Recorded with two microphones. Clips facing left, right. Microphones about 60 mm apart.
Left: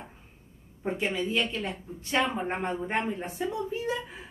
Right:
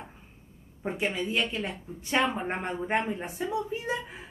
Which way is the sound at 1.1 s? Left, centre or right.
Centre.